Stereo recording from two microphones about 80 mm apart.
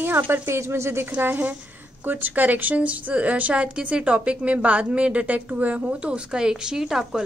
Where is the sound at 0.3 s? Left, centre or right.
Right.